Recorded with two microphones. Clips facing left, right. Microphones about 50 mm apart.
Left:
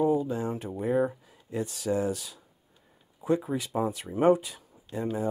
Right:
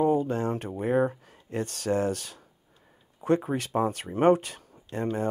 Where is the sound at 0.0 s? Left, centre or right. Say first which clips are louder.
Right 2 dB; right.